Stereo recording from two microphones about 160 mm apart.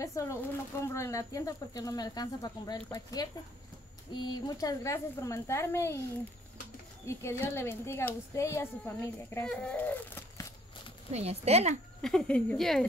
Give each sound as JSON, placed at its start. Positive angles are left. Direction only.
{"t": 0.0, "sound": "speech", "side_deg": 20}
{"t": 7.1, "sound": "speech", "side_deg": 15}
{"t": 9.5, "sound": "a sound", "side_deg": 5}
{"t": 11.1, "sound": "speech", "side_deg": -40}
{"t": 12.0, "sound": "speech", "side_deg": 5}